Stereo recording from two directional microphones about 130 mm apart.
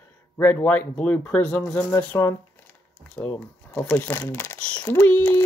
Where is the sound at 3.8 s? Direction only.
15° left (ahead or behind).